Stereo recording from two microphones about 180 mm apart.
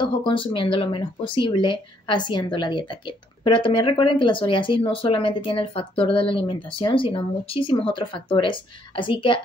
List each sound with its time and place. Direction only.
0.0 s speech: 30° left (ahead or behind)